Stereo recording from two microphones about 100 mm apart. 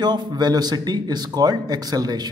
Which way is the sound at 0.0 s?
45° right (ahead or behind).